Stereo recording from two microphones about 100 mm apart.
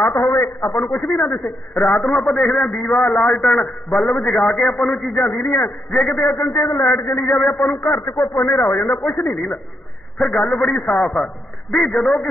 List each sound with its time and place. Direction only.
0.0 s a man's voice: 25° left (ahead or behind)
1.9 s a man's voice: 10° left (ahead or behind)
2.1 s a man's voice: centre (ahead or behind)
5.9 s a man's voice: centre (ahead or behind)
6.2 s a man's voice: 35° left (ahead or behind)
6.5 s a man's voice: 25° left (ahead or behind)
7.5 s a man's voice: centre (ahead or behind)
8.0 s a man's voice: 25° left (ahead or behind)
10.1 s a man's voice: 5° left (ahead or behind)